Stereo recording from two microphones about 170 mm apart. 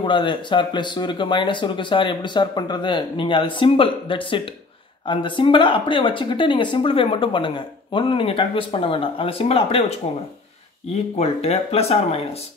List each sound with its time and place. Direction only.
0.0 s speech: 30° left (ahead or behind)